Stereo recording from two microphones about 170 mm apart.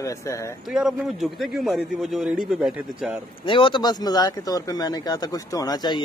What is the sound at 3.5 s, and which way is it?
Speech, 30° left (ahead or behind).